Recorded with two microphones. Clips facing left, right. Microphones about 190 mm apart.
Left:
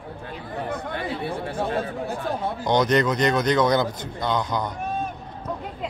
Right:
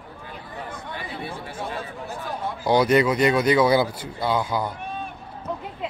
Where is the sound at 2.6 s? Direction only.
5° right (ahead or behind).